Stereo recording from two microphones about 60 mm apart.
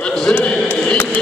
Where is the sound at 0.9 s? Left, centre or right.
Left.